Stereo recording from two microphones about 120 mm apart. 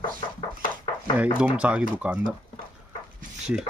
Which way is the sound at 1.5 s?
10° right (ahead or behind).